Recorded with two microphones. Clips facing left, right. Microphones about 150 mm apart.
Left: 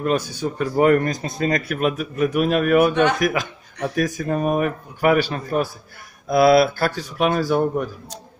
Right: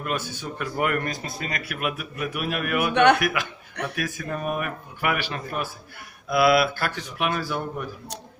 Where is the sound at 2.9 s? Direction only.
65° right (ahead or behind).